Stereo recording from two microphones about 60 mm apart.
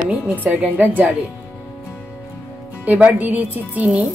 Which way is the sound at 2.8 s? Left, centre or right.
Right.